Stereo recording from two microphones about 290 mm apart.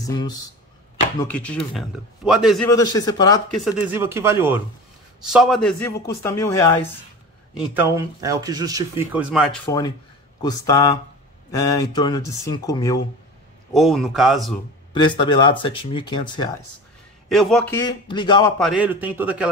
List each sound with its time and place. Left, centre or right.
0.0 s speech: centre
2.7 s speech: centre
3.5 s speech: centre
7.7 s speech: centre
9.7 s speech: centre
13.7 s speech: centre
14.9 s speech: centre
17.3 s speech: centre
18.6 s speech: centre